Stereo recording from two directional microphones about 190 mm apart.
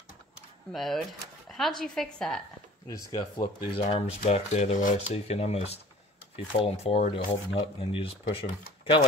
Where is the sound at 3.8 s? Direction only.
35° left (ahead or behind).